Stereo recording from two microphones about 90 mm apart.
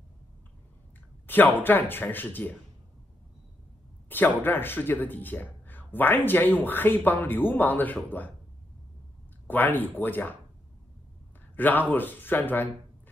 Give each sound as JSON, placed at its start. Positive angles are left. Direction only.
{"t": 1.2, "sound": "a man's voice", "side_deg": 20}
{"t": 4.1, "sound": "a man's voice", "side_deg": 20}
{"t": 9.5, "sound": "a man's voice", "side_deg": 20}
{"t": 11.5, "sound": "a man's voice", "side_deg": 20}